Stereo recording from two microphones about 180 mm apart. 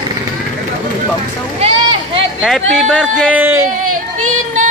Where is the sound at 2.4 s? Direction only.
Centre (ahead or behind).